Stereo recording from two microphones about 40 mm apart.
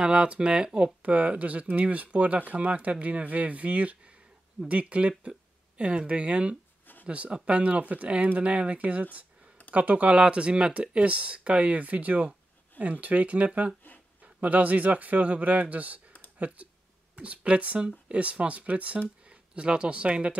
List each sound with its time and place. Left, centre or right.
0.0 s speech: right
1.0 s speech: right
17.7 s speech: right